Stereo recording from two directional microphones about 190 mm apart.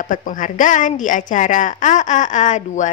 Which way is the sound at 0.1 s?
45° left (ahead or behind).